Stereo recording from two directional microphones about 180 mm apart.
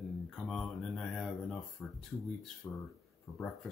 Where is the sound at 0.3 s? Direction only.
Centre (ahead or behind).